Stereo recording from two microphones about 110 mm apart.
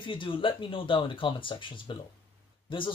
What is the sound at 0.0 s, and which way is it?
Speech, 50° left (ahead or behind).